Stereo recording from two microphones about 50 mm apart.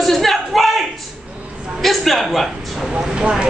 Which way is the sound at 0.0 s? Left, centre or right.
Centre.